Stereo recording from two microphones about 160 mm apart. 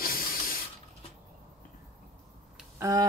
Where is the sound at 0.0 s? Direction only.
65° left (ahead or behind).